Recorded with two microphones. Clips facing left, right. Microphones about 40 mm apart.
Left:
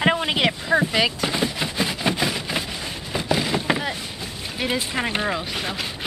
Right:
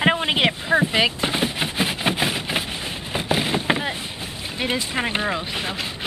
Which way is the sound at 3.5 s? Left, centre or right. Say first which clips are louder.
Right 1 dB; centre.